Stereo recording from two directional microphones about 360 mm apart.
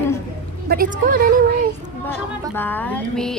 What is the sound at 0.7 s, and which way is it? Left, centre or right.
Speech, right.